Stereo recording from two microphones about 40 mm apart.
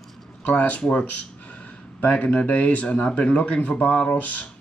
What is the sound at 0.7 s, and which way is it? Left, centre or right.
Speech, left.